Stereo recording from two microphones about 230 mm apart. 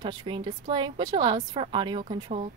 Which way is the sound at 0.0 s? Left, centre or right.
Centre.